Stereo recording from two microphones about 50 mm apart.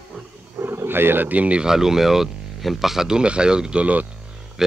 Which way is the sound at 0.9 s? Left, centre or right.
Right.